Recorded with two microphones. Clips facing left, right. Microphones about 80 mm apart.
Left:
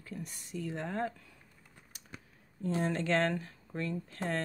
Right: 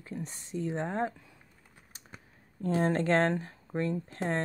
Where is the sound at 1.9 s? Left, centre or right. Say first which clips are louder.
Right 6 dB; right.